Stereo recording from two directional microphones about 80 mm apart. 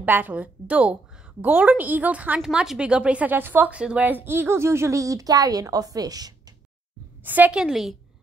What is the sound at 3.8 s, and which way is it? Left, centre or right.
Speech, centre.